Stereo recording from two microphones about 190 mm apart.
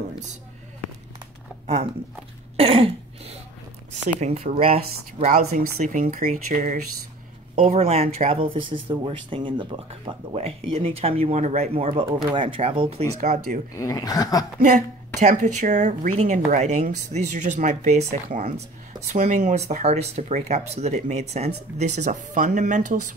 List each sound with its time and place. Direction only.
2.5 s throat clearing: 30° right (ahead or behind)
4.2 s speech: 35° right (ahead or behind)
5.5 s speech: 40° right (ahead or behind)
13.7 s speech: 20° left (ahead or behind)
14.6 s speech: 40° right (ahead or behind)